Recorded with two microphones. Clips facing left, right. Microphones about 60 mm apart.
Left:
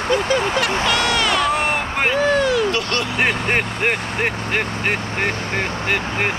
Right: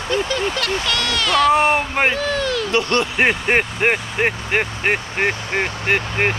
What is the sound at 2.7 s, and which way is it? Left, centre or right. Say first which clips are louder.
Speech: right 2 dB; right.